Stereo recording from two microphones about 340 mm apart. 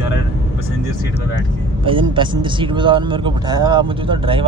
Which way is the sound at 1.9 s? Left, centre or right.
Centre.